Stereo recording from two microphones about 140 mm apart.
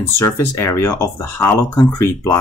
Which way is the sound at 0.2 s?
20° left (ahead or behind).